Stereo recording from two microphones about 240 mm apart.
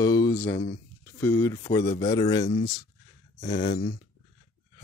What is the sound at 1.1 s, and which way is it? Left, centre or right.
Speech, centre.